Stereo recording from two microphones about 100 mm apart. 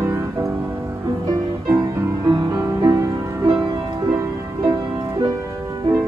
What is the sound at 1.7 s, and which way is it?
Music, 35° right (ahead or behind).